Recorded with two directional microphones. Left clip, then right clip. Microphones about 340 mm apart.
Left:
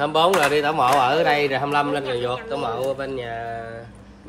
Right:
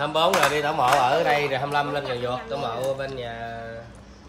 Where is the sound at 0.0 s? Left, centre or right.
Left.